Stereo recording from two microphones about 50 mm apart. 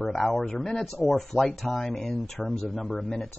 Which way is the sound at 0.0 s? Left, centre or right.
Centre.